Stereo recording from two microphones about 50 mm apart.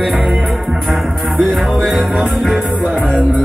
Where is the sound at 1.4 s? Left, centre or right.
Centre.